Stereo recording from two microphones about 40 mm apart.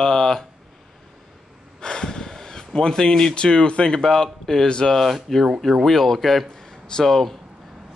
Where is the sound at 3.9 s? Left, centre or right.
Centre.